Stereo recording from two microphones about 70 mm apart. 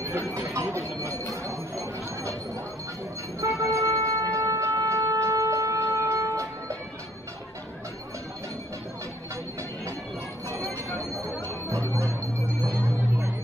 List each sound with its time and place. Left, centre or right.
0.0 s a sound: right
3.3 s wind instrument: right
11.7 s music: right